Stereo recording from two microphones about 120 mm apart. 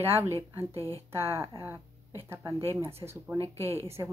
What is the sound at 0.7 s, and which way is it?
Speech, 25° left (ahead or behind).